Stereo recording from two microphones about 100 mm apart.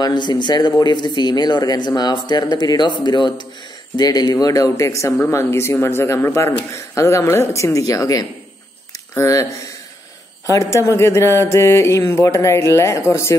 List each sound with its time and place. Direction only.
0.0 s speech: 50° left (ahead or behind); by 9.5 s 30° left (ahead or behind)
10.5 s speech: 30° left (ahead or behind)